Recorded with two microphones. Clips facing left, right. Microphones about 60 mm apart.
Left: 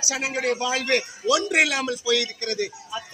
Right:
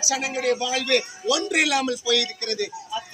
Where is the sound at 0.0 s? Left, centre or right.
Left.